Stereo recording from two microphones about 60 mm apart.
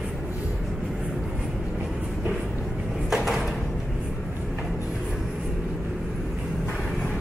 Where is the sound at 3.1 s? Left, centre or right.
Centre.